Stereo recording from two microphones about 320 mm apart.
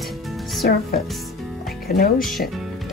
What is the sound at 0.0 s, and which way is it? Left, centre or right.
Music, centre.